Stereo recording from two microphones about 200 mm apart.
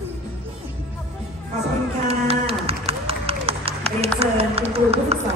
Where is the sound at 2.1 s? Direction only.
30° right (ahead or behind).